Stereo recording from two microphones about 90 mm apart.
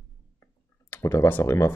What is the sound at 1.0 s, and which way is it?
Speech, 30° left (ahead or behind).